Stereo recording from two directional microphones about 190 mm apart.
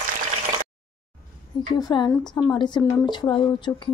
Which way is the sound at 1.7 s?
20° left (ahead or behind).